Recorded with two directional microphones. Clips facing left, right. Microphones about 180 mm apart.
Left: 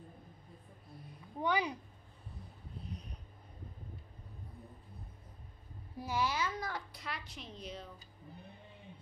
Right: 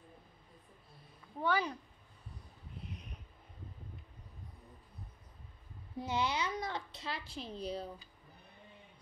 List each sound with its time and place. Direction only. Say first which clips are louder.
1.4 s speech: even; 15° left (ahead or behind)
2.9 s a sound: left 2 dB; 35° left (ahead or behind)
5.9 s a child's voice: even; 20° right (ahead or behind)